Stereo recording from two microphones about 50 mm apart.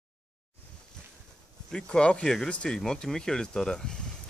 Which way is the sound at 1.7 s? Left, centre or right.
Centre.